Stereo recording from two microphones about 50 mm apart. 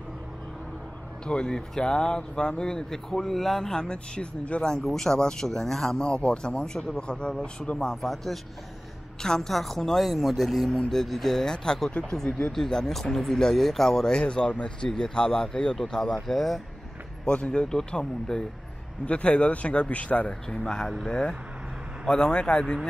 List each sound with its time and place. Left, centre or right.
1.2 s speech: centre
7.9 s speech: centre; by 12.5 s left
12.5 s speech: centre
17.3 s speech: left
19.0 s speech: left
20.4 s speech: centre